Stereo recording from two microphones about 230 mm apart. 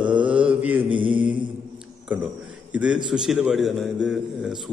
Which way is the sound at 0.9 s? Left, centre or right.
Right.